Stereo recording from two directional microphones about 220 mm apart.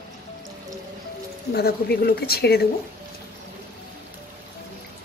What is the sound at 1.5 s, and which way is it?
Speech, 45° left (ahead or behind).